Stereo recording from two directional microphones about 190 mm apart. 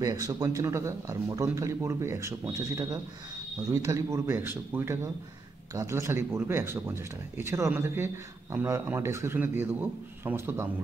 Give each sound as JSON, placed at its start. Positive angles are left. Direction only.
{"t": 0.0, "sound": "speech", "side_deg": -20}